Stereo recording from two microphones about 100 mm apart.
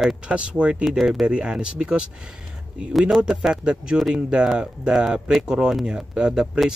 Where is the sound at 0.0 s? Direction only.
5° right (ahead or behind).